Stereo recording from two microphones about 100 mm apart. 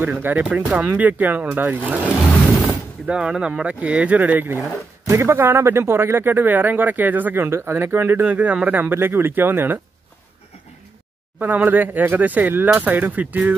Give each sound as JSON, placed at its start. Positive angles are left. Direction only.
{"t": 0.0, "sound": "speech", "side_deg": -20}
{"t": 11.3, "sound": "speech", "side_deg": -15}